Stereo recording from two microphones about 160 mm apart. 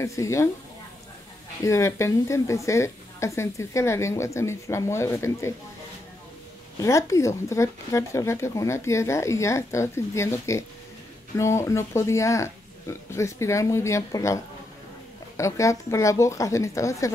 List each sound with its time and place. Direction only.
0.0 s a woman's voice: 20° left (ahead or behind)
1.6 s a woman's voice: 20° left (ahead or behind)
6.8 s a woman's voice: 20° left (ahead or behind)